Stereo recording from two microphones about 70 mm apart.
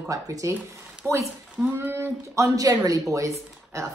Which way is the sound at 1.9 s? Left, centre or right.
Right.